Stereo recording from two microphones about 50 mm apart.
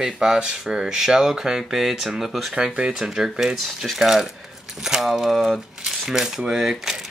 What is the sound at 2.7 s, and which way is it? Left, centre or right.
Speech, centre.